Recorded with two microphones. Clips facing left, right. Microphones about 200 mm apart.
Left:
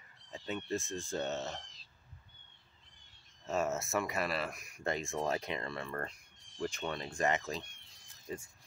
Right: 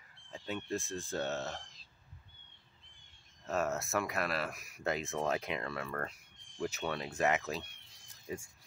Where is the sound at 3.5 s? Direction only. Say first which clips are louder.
Even; centre (ahead or behind).